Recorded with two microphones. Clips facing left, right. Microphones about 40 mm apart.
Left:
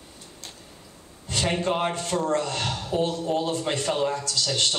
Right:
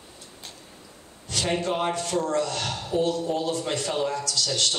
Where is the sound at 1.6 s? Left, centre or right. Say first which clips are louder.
Left 1 dB; centre.